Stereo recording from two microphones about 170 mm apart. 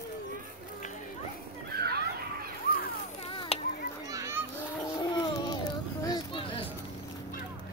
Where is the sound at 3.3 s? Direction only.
30° left (ahead or behind).